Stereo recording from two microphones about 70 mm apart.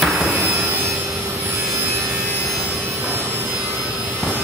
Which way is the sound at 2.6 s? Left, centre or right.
Right.